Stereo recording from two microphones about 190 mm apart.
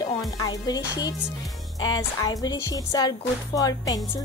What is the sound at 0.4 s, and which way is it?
Speech, 20° left (ahead or behind).